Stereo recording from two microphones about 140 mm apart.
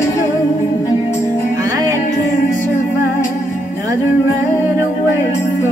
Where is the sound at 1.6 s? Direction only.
25° right (ahead or behind).